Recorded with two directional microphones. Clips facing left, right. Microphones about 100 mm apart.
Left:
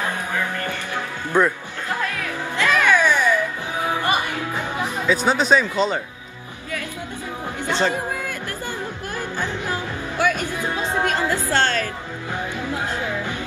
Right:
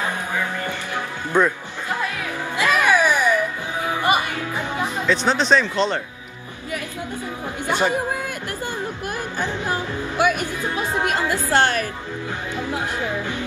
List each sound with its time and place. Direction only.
0.0 s music: 15° right (ahead or behind)
1.3 s speech: 15° left (ahead or behind)
2.5 s music: 15° right (ahead or behind)
4.8 s speech: 10° left (ahead or behind)
7.6 s chatter: 15° right (ahead or behind)
9.4 s music: 15° right (ahead or behind)
11.0 s speech: 15° right (ahead or behind)